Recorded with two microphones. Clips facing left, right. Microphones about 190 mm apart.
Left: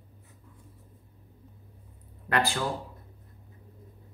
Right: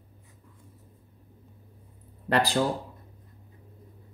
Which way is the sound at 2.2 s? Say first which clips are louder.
Right 4 dB; 35° right (ahead or behind).